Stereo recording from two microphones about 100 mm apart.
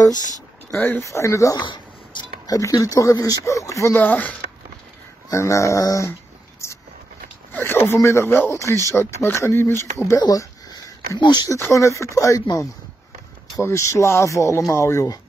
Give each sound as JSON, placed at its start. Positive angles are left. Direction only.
{"t": 0.7, "sound": "speech", "side_deg": 20}
{"t": 1.6, "sound": "speech", "side_deg": 50}
{"t": 4.0, "sound": "speech", "side_deg": 15}
{"t": 5.3, "sound": "speech", "side_deg": 30}
{"t": 6.6, "sound": "vehicle", "side_deg": 30}
{"t": 7.5, "sound": "speech", "side_deg": 20}
{"t": 10.1, "sound": "a sound", "side_deg": 45}
{"t": 11.4, "sound": "speech", "side_deg": 30}